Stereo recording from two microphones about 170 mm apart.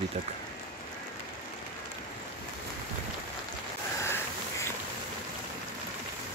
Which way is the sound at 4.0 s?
15° left (ahead or behind).